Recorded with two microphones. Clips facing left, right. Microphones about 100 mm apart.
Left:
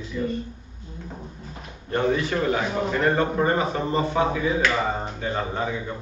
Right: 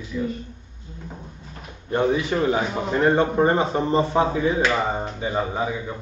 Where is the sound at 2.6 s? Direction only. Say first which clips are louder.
Left 1 dB; centre (ahead or behind).